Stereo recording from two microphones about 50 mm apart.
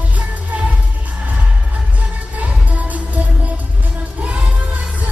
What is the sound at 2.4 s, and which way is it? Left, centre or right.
Music, right.